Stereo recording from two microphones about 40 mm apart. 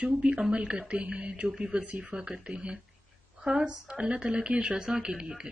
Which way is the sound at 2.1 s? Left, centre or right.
Right.